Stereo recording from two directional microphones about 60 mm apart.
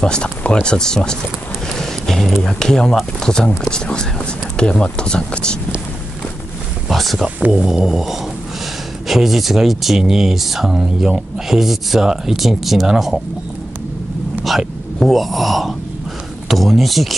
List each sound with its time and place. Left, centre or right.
0.0 s speech: centre
1.7 s music: centre
2.4 s speech: centre
6.9 s speech: centre
14.4 s speech: centre